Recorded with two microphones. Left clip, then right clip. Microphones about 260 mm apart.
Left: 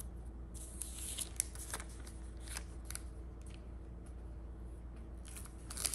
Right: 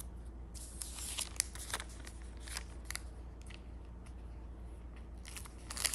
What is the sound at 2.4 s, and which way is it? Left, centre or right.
Scissors, centre.